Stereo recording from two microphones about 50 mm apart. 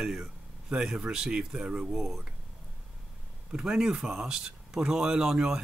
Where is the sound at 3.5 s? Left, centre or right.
Centre.